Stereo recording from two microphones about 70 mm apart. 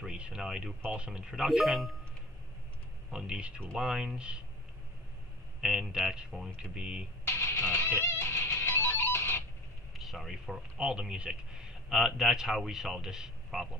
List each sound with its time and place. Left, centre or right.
0.0 s speech: centre
3.1 s speech: centre
5.6 s speech: centre
7.2 s music: left
9.9 s speech: centre
10.8 s a man's voice: centre